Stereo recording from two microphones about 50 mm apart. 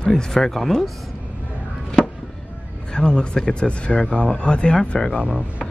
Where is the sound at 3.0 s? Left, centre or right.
Centre.